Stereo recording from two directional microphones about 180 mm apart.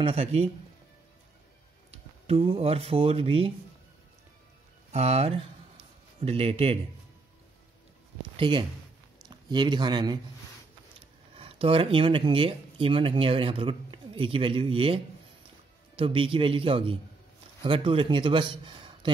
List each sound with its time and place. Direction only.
0.0 s speech: 35° right (ahead or behind)
1.9 s speech: 35° right (ahead or behind)
4.9 s speech: 35° right (ahead or behind)
8.4 s a man's voice: 25° right (ahead or behind)
11.3 s speech: 30° right (ahead or behind)
16.0 s a man's voice: 30° right (ahead or behind)